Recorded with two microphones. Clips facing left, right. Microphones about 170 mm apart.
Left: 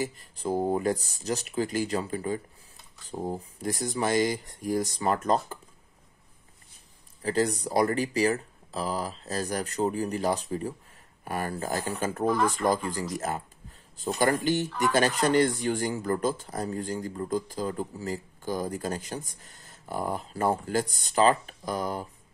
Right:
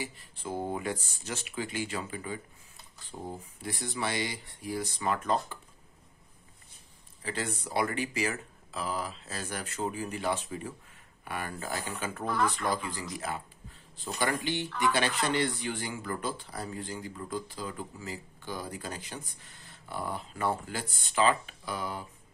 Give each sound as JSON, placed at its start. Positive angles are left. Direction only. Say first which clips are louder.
{"t": 0.0, "sound": "speech", "louder": "left 8 dB", "side_deg": 40}
{"t": 7.2, "sound": "speech", "louder": "left 9 dB", "side_deg": 40}